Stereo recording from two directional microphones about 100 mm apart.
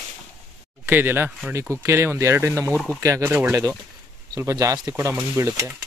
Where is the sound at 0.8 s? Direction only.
20° right (ahead or behind).